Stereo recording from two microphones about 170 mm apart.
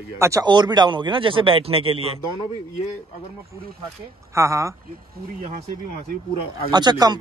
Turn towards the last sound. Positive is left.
turn(degrees=-25)  # may be behind; listen again after turning